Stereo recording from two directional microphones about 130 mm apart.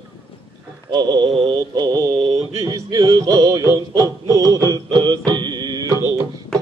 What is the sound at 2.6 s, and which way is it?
Music, 25° right (ahead or behind).